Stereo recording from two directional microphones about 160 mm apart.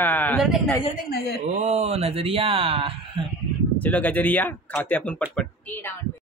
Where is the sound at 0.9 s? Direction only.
75° left (ahead or behind).